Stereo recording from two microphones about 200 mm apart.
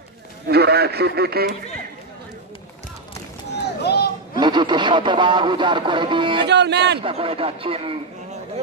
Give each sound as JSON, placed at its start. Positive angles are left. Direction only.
{"t": 0.5, "sound": "speech", "side_deg": -55}
{"t": 3.8, "sound": "a sound", "side_deg": 55}
{"t": 4.4, "sound": "speech", "side_deg": -20}
{"t": 6.4, "sound": "speech", "side_deg": -60}
{"t": 7.0, "sound": "speech", "side_deg": -25}